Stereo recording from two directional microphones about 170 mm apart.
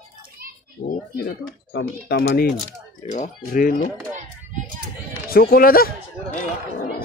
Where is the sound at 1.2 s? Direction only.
70° left (ahead or behind).